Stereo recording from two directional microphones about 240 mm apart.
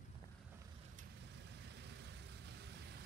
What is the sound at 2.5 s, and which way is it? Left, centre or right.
Vehicle, right.